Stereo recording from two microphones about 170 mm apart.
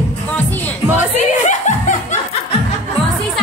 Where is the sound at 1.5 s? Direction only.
45° left (ahead or behind).